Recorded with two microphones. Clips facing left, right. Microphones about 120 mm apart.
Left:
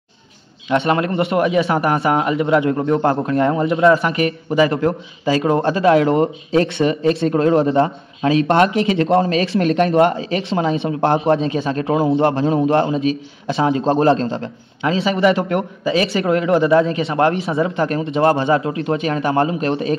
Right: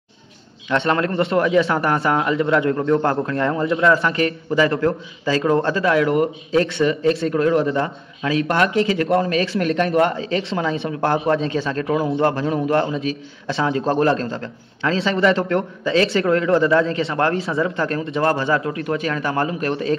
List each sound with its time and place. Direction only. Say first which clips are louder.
0.7 s a man's voice: left 2 dB; 15° left (ahead or behind)